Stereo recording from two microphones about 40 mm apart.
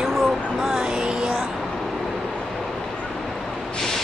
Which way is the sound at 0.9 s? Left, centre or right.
Right.